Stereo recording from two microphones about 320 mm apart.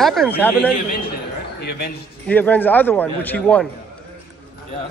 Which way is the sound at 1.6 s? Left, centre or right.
Left.